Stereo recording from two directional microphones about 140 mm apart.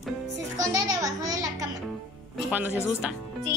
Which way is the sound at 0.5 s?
25° right (ahead or behind).